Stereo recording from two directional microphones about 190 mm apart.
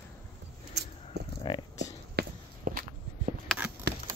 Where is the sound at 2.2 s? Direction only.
45° right (ahead or behind).